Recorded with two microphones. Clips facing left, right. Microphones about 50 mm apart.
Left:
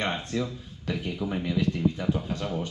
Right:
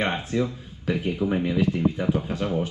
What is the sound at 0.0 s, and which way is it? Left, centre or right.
Speech, centre.